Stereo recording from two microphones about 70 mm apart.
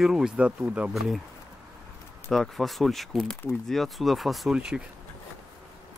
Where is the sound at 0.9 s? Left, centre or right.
Centre.